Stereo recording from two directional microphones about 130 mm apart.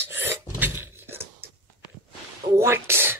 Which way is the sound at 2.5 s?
20° right (ahead or behind).